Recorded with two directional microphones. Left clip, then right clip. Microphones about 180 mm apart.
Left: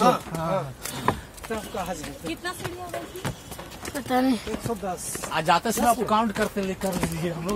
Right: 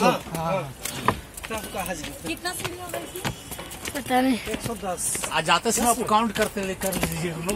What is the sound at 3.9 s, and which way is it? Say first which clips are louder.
Speech: right 1 dB; 5° left (ahead or behind).